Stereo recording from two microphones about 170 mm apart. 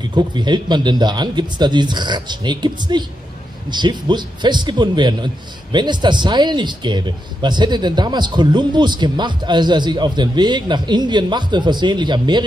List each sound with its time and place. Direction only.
0.1 s a man's voice: 25° right (ahead or behind)